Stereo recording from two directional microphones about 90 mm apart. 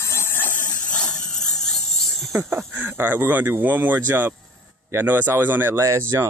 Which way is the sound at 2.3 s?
20° right (ahead or behind).